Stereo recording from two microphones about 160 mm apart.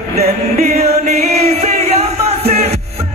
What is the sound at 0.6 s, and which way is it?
Music, 40° right (ahead or behind).